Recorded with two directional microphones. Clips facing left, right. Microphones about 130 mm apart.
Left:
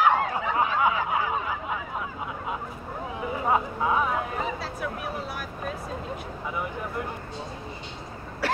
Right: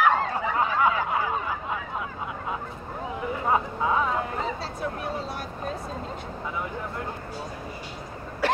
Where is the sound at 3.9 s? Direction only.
10° left (ahead or behind).